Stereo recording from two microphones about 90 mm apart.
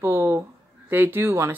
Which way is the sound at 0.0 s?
30° right (ahead or behind).